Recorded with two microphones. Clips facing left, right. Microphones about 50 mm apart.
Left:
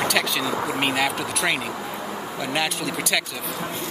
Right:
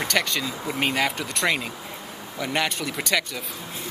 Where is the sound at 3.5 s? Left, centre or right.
Left.